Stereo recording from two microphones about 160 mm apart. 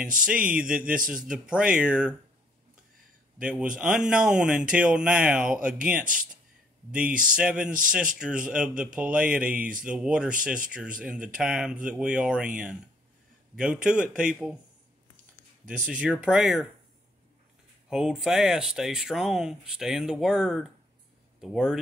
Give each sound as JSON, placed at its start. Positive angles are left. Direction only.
{"t": 0.1, "sound": "speech", "side_deg": -5}
{"t": 3.3, "sound": "speech", "side_deg": -5}
{"t": 7.2, "sound": "speech", "side_deg": -5}
{"t": 15.6, "sound": "speech", "side_deg": -55}
{"t": 15.9, "sound": "speech", "side_deg": -5}
{"t": 17.8, "sound": "speech", "side_deg": -5}